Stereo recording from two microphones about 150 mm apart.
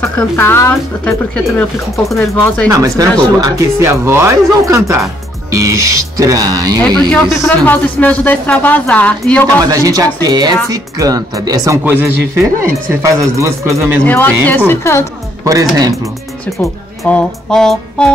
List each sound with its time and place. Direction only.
0.2 s speech: 15° left (ahead or behind)
2.7 s speech: 25° right (ahead or behind)
7.1 s music: centre (ahead or behind)
7.4 s speech: 10° left (ahead or behind)
9.6 s speech: 25° right (ahead or behind)
11.8 s speech: 10° right (ahead or behind)
14.0 s speech: 10° left (ahead or behind)
15.4 s speech: 20° right (ahead or behind)
17.0 s music: 5° left (ahead or behind)